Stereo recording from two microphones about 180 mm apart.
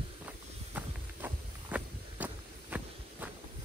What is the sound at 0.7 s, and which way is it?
Walk, 10° right (ahead or behind).